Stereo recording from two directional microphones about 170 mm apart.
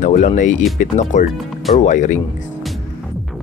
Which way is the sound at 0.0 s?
45° left (ahead or behind).